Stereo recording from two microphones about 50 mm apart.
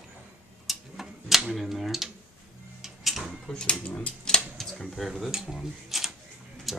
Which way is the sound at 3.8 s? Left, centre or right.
Left.